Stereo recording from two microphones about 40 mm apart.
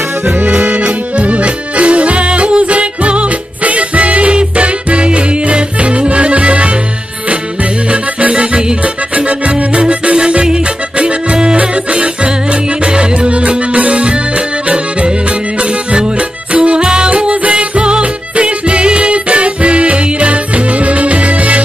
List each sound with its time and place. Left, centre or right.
0.2 s accordion: right
8.2 s music: right
17.1 s music: right